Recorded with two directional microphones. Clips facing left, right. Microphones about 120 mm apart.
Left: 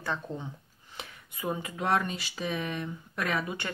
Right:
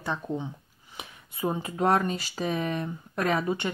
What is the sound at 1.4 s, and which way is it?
Speech, 30° right (ahead or behind).